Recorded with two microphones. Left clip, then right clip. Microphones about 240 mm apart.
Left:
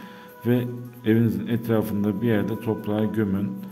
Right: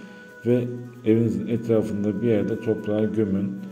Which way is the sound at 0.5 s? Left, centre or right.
Left.